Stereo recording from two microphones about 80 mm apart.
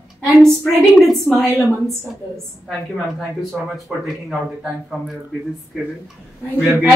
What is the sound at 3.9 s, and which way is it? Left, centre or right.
Speech, centre.